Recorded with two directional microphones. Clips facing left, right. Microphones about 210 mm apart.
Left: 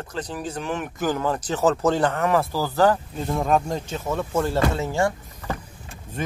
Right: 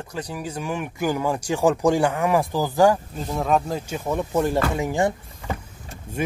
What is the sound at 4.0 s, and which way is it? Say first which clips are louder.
Speech: right 2 dB; 15° right (ahead or behind).